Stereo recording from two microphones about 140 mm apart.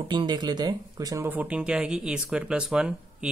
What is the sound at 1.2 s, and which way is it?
Speech, 10° right (ahead or behind).